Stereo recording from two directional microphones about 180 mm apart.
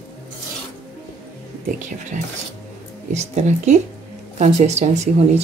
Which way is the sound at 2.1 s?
45° right (ahead or behind).